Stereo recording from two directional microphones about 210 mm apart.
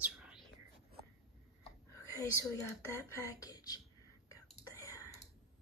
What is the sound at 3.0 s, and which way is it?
Speech, 15° left (ahead or behind).